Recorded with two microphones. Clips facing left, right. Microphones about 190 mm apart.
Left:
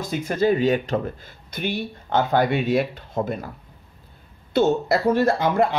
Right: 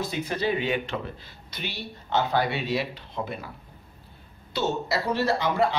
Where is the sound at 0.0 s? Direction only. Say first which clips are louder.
Left 6 dB; 50° left (ahead or behind).